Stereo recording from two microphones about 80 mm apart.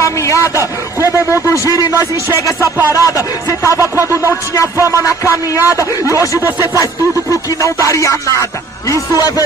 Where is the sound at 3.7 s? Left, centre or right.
Right.